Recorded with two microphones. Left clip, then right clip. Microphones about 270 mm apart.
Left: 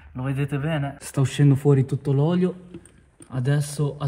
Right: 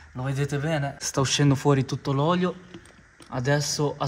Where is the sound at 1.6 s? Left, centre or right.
Left.